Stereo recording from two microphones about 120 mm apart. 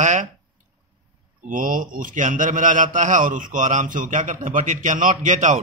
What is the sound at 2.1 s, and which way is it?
A man's voice, 90° right.